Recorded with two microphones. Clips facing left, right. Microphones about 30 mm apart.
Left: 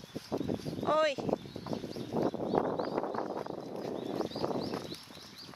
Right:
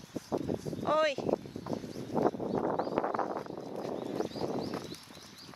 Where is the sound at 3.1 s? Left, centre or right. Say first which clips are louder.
Right 3 dB; right.